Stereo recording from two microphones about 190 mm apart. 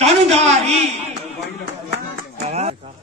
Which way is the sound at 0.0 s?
35° right (ahead or behind).